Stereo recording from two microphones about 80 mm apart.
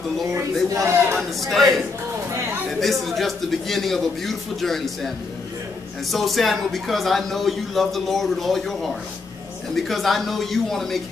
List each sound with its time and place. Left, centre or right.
0.7 s a man's voice: right
1.5 s a man's voice: centre
2.8 s a man's voice: centre
9.8 s a man's voice: centre